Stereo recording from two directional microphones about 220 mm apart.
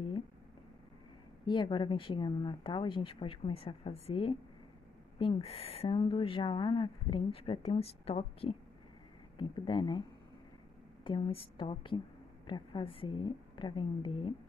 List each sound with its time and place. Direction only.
1.4 s a woman's voice: 20° left (ahead or behind)
11.1 s a woman's voice: 25° left (ahead or behind)